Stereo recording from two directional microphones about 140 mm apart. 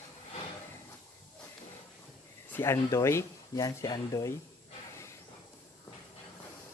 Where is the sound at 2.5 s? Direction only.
20° left (ahead or behind).